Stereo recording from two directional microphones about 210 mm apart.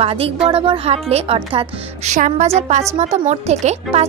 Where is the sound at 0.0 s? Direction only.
25° right (ahead or behind).